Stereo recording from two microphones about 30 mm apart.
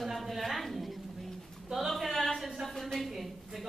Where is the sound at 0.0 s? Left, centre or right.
Centre.